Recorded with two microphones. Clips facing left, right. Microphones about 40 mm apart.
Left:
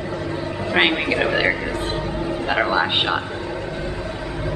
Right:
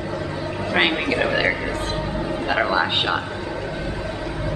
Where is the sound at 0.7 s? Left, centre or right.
Centre.